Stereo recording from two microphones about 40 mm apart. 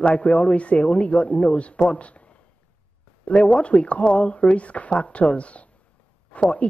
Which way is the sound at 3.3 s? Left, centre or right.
Left.